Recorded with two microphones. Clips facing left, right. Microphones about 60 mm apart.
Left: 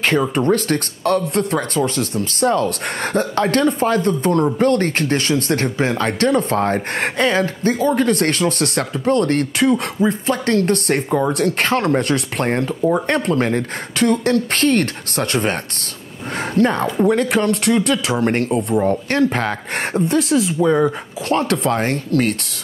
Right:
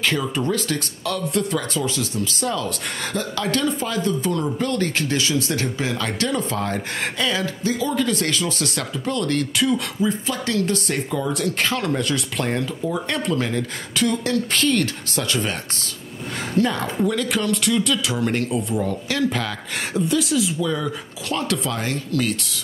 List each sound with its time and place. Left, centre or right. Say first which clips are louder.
0.0 s speech: left 6 dB; left
16.5 s speech: left 5 dB; left